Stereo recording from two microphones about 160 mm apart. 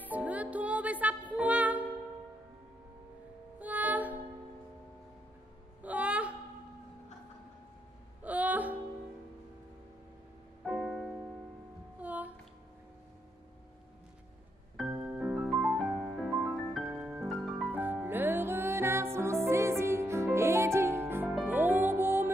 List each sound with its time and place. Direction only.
0.0 s music: 10° right (ahead or behind)
3.5 s music: 10° right (ahead or behind)
5.8 s a sound: 10° right (ahead or behind)
8.2 s music: 10° right (ahead or behind)
10.6 s music: 5° right (ahead or behind)
14.9 s music: 20° right (ahead or behind)
15.1 s music: 5° right (ahead or behind)
17.7 s music: 10° right (ahead or behind)